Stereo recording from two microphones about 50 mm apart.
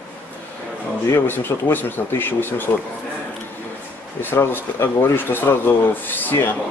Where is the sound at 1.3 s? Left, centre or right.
Left.